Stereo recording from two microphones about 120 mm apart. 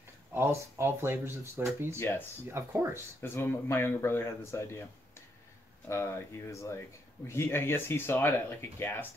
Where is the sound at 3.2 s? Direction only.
20° left (ahead or behind).